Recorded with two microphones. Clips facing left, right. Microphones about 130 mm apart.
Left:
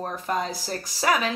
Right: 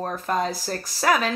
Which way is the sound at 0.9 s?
10° left (ahead or behind).